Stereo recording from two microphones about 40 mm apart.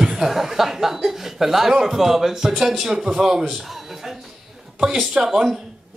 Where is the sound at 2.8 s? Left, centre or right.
Centre.